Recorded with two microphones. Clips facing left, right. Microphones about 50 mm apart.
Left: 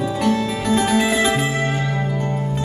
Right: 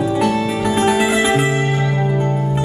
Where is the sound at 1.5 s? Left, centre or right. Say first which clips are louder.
Right 3 dB; right.